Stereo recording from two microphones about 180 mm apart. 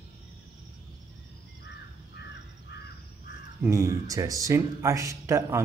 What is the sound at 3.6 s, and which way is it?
Speech, 15° right (ahead or behind).